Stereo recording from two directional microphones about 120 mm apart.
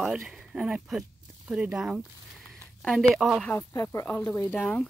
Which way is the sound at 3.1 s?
Centre (ahead or behind).